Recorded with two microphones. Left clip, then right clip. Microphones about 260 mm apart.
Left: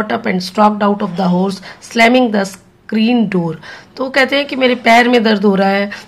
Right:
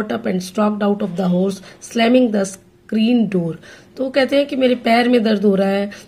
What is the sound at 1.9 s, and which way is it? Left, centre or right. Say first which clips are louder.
Speech: left 5 dB; centre.